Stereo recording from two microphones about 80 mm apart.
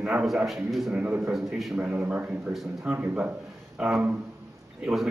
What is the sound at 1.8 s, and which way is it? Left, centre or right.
A man's voice, centre.